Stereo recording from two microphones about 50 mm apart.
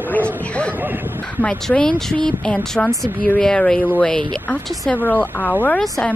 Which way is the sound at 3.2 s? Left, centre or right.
Left.